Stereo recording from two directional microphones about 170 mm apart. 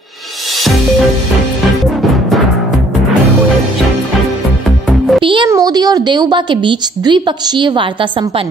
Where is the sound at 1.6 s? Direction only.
Centre (ahead or behind).